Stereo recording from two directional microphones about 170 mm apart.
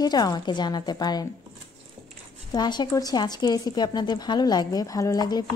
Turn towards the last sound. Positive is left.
turn(degrees=25)  # may be behind; listen again after turning